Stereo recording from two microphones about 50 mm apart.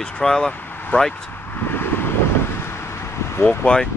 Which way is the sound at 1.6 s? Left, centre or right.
Left.